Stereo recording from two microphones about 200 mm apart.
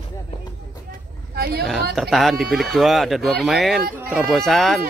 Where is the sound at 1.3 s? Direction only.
50° right (ahead or behind).